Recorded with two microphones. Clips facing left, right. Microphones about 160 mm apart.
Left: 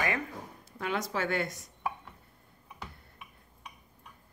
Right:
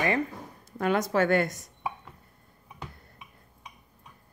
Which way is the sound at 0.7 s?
50° right (ahead or behind).